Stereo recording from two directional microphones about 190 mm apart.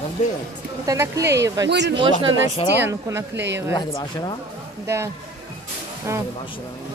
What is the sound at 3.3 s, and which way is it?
Speech, 65° right (ahead or behind).